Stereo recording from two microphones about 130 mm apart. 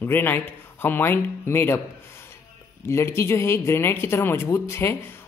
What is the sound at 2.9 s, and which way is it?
Speech, 20° left (ahead or behind).